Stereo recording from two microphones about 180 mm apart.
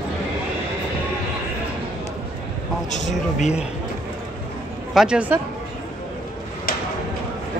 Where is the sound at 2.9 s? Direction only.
40° left (ahead or behind).